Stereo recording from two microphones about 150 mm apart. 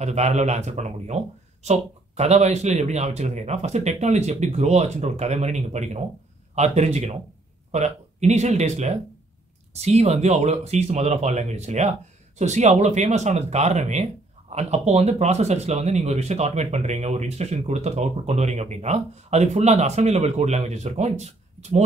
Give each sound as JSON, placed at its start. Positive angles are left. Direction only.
{"t": 0.0, "sound": "speech", "side_deg": -50}